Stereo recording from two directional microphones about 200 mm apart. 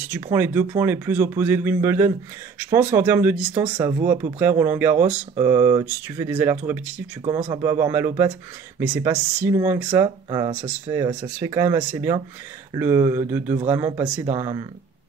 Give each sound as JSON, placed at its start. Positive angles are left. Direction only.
{"t": 0.0, "sound": "a man's voice", "side_deg": -10}